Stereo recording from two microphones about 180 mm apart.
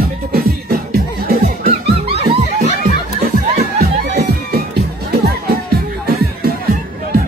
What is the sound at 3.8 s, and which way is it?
Music, 60° right (ahead or behind).